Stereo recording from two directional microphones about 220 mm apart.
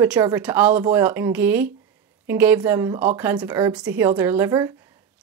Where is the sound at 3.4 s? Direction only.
20° right (ahead or behind).